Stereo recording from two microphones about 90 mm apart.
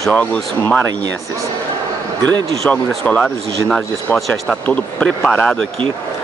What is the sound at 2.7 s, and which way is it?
Speech, 15° left (ahead or behind).